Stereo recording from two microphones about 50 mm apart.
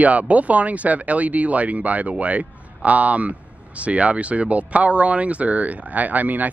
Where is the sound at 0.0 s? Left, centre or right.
Right.